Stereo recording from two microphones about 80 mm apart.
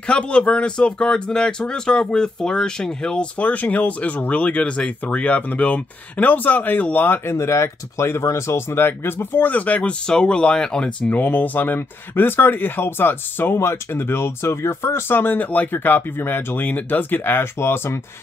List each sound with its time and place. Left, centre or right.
0.0 s speech: centre
11.1 s speech: left